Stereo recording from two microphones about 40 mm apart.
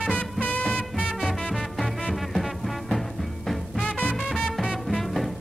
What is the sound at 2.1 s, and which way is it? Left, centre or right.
Music, centre.